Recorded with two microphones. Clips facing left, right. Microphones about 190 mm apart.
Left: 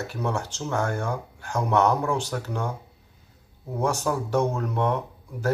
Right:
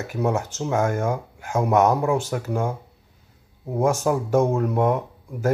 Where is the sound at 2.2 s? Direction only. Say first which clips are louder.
Right 5 dB; 5° right (ahead or behind).